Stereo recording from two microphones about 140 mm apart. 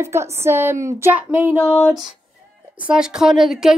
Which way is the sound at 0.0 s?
20° right (ahead or behind).